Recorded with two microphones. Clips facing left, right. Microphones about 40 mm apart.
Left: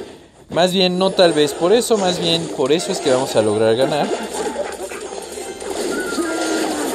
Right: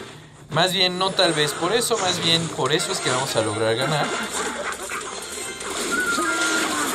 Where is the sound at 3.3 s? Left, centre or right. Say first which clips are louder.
Left 6 dB; centre.